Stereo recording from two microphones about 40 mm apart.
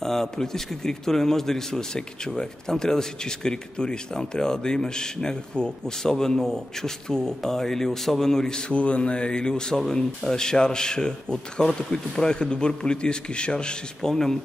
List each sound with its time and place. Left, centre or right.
0.0 s a man's voice: centre